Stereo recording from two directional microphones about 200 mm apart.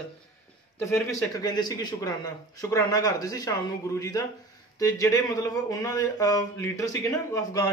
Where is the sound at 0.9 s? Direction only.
20° left (ahead or behind).